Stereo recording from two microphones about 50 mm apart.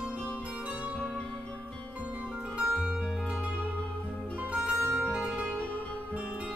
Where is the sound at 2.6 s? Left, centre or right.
Right.